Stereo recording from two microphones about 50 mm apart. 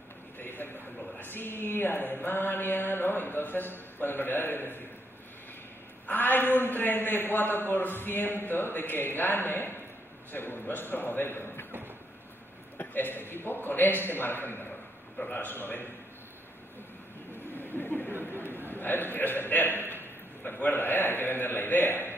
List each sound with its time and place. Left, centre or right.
0.4 s a sound: left
1.2 s speech: left
6.0 s a woman's voice: left
12.7 s speech: left
15.1 s a woman's voice: left
15.5 s speech: left
17.6 s a sound: left
18.7 s a man's voice: left
19.9 s a sound: left
20.7 s speech: left